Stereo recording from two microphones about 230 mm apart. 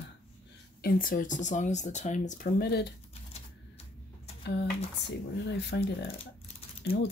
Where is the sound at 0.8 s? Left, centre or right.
Left.